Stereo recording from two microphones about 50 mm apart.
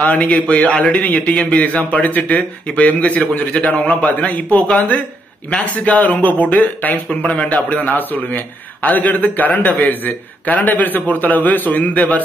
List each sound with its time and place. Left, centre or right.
0.0 s a man's voice: left